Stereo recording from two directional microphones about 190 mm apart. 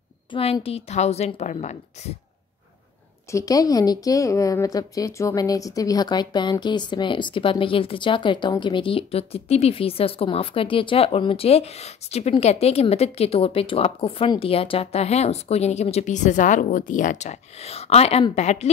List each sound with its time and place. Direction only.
0.3 s a woman's voice: 30° left (ahead or behind)
3.3 s a woman's voice: 15° left (ahead or behind); by 18.7 s 35° left (ahead or behind)